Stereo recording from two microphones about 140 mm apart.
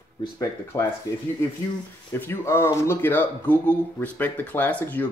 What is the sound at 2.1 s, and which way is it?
Speech, 15° left (ahead or behind).